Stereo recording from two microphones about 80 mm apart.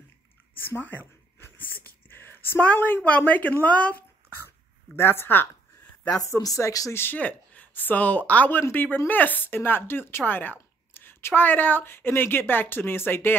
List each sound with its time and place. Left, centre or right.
0.7 s speech: left
4.9 s speech: left
6.1 s speech: left
7.0 s speech: left